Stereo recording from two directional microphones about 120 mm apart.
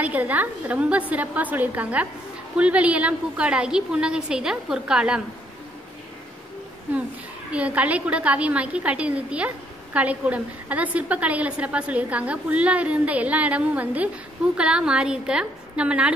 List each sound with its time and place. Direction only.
0.0 s a woman's voice: 10° right (ahead or behind)
7.5 s a woman's voice: 10° right (ahead or behind)